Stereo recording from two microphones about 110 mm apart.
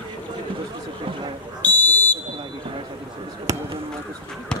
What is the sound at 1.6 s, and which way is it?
Fire alarm, 15° left (ahead or behind).